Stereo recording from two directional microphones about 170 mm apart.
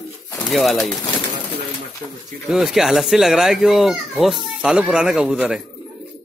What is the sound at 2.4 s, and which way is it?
A child's voice, centre (ahead or behind).